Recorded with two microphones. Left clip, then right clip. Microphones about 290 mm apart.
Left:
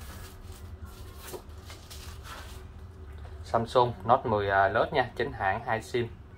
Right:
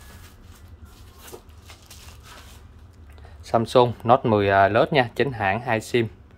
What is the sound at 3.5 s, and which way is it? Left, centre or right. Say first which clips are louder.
Speech: right 7 dB; right.